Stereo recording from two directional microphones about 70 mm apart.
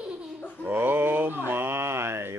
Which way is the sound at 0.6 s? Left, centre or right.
Right.